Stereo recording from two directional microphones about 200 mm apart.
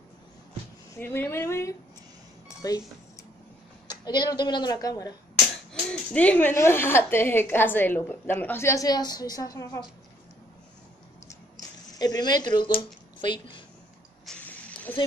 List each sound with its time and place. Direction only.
0.9 s speech: 10° left (ahead or behind)
4.0 s a woman's voice: 20° left (ahead or behind)
5.7 s speech: 5° left (ahead or behind)
12.0 s speech: 20° left (ahead or behind)
14.2 s hiss: 10° left (ahead or behind)